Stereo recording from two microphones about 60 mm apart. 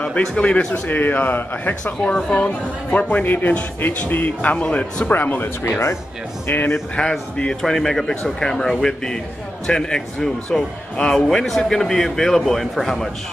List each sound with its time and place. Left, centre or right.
0.0 s a man's voice: centre
0.8 s speech: left
2.1 s speech: centre
4.6 s speech: centre
5.1 s speech: left
5.6 s speech: left
6.4 s speech: left
7.0 s a man's voice: centre